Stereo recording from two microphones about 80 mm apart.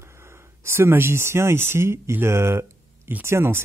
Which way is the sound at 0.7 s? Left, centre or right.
Right.